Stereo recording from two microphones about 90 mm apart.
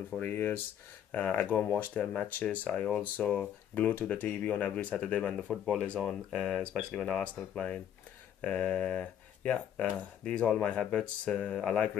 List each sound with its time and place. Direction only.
0.1 s speech: 20° left (ahead or behind)